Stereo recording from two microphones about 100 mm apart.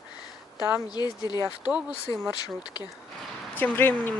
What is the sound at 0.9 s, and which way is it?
Speech, 45° left (ahead or behind).